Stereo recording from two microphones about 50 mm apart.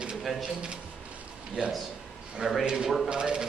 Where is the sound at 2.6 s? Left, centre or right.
Centre.